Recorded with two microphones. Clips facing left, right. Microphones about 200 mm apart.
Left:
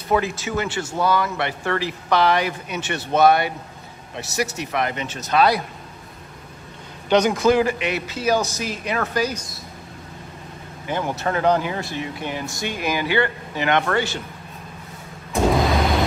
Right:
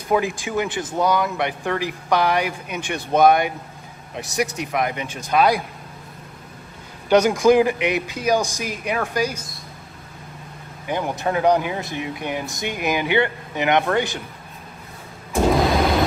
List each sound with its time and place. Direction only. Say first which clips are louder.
0.1 s speech: right 1 dB; 15° right (ahead or behind)
7.1 s speech: right 2 dB; 10° right (ahead or behind)
10.9 s speech: right 1 dB; 15° right (ahead or behind)